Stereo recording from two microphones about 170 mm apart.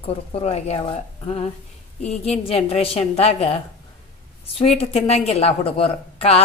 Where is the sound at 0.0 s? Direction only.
35° left (ahead or behind).